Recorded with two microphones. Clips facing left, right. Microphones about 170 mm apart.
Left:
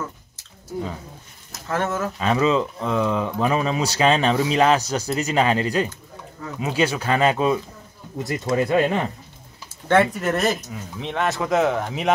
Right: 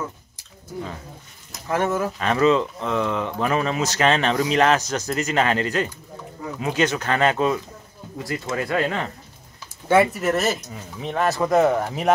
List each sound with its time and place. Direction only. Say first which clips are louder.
1.7 s speech: right 2 dB; 15° right (ahead or behind)
2.1 s speech: even; 10° left (ahead or behind)
8.2 s speech: left 5 dB; 25° left (ahead or behind)
9.8 s speech: right 1 dB; 5° right (ahead or behind)